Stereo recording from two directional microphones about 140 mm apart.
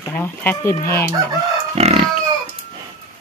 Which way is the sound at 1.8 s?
50° right (ahead or behind).